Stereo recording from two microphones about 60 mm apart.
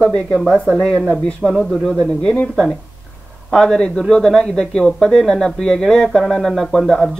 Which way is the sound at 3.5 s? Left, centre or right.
Centre.